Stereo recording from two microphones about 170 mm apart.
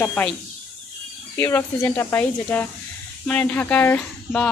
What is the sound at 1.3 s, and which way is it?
Speech, 15° left (ahead or behind).